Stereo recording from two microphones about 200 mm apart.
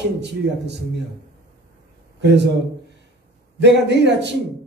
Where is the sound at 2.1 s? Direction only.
60° right (ahead or behind).